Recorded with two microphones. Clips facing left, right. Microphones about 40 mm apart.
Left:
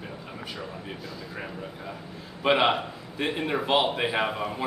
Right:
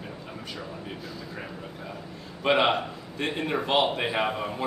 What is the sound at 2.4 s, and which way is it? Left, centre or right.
A man's voice, centre.